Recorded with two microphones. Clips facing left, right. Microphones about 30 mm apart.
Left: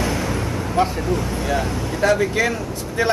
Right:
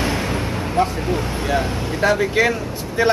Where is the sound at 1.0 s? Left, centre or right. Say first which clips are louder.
Even; right.